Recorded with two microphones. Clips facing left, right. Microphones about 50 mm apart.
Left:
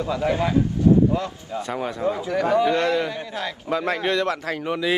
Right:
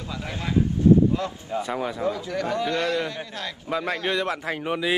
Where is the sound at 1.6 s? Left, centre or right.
Centre.